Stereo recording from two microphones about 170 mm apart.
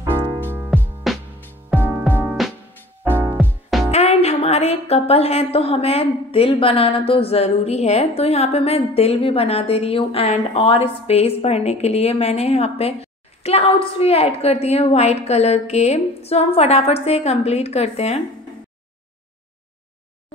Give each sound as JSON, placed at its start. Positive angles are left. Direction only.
{"t": 0.4, "sound": "music", "side_deg": -10}
{"t": 1.1, "sound": "music", "side_deg": 0}
{"t": 1.4, "sound": "music", "side_deg": 10}
{"t": 3.0, "sound": "music", "side_deg": -15}
{"t": 3.9, "sound": "a woman's voice", "side_deg": 40}